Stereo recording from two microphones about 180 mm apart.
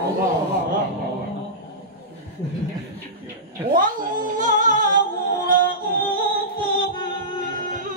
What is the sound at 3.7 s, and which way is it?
Music, 50° right (ahead or behind).